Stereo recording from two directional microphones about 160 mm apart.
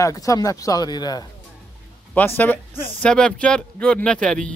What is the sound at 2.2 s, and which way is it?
Speech, 15° left (ahead or behind).